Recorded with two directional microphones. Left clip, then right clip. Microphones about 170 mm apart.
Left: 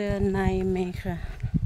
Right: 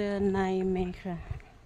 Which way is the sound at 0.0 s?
20° left (ahead or behind).